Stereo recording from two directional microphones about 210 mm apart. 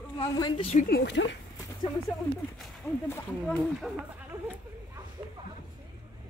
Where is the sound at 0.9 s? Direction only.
55° left (ahead or behind).